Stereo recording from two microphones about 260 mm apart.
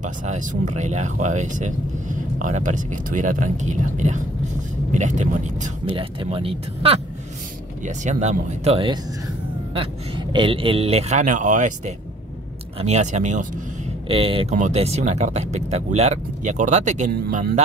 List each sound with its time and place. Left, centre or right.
0.0 s speech: right